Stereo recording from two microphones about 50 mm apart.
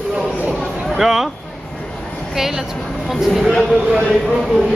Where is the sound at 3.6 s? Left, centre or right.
Centre.